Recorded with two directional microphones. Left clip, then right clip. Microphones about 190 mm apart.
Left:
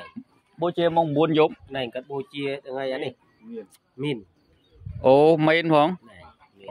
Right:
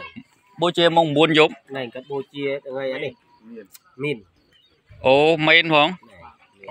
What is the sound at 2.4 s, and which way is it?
Speech, 20° left (ahead or behind).